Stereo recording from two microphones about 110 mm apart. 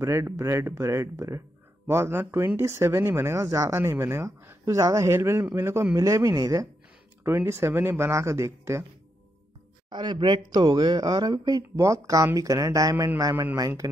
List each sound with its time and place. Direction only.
0.0 s speech: 25° right (ahead or behind)
9.8 s speech: 45° right (ahead or behind)